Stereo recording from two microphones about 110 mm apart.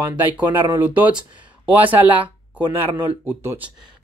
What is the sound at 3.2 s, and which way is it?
Speech, 15° right (ahead or behind).